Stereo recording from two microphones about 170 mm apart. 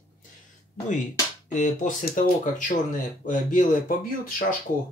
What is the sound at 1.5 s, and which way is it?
Speech, 45° left (ahead or behind).